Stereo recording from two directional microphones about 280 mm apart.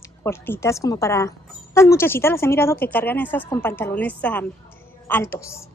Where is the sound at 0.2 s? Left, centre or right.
Centre.